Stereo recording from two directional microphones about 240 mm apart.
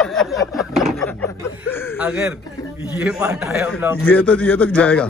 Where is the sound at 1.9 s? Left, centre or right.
Centre.